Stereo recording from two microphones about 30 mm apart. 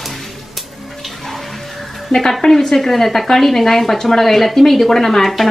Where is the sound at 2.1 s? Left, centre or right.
Centre.